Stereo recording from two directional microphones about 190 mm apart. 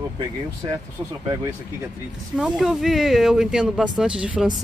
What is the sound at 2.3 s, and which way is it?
Speech, 5° right (ahead or behind).